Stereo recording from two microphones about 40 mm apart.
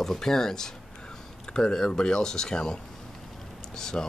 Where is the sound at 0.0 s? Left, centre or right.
Centre.